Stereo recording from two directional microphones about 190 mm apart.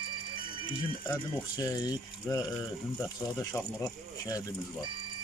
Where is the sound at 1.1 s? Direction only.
20° left (ahead or behind).